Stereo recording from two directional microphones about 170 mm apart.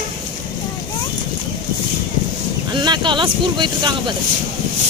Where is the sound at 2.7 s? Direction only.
25° right (ahead or behind).